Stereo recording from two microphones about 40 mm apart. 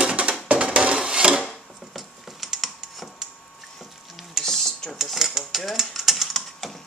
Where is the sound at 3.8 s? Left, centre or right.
Centre.